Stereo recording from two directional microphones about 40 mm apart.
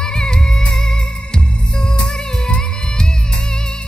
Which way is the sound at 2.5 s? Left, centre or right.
Centre.